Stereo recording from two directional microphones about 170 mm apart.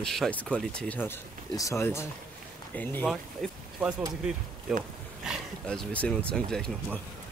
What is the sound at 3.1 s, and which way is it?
Speech, 5° right (ahead or behind).